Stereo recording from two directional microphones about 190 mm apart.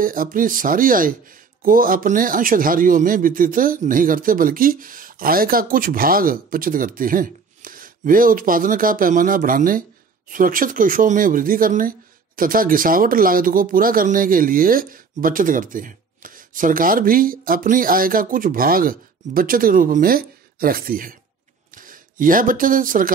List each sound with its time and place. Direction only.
0.0 s speech: 45° right (ahead or behind)